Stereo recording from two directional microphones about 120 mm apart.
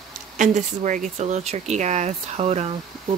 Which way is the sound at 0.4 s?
90° right.